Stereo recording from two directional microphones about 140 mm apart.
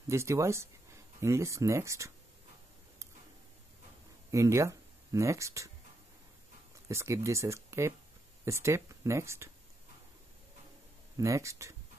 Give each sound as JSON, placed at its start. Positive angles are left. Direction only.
{"t": 0.1, "sound": "speech", "side_deg": -20}
{"t": 4.3, "sound": "speech", "side_deg": -20}
{"t": 6.9, "sound": "speech", "side_deg": -20}
{"t": 11.1, "sound": "speech", "side_deg": -20}